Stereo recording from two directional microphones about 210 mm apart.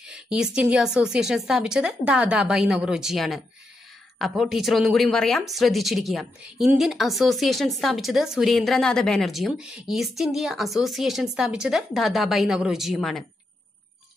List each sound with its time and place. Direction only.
0.0 s a woman's voice: 5° right (ahead or behind)